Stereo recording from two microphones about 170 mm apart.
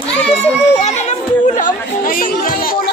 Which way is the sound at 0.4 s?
40° left (ahead or behind).